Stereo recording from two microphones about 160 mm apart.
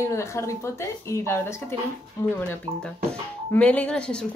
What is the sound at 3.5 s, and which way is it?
Speech, 10° left (ahead or behind).